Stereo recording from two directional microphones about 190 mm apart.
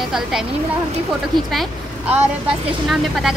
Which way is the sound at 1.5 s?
5° right (ahead or behind).